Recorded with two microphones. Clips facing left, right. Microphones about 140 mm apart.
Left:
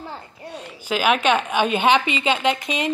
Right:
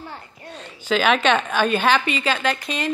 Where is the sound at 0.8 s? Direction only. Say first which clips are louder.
Right 1 dB; 10° left (ahead or behind).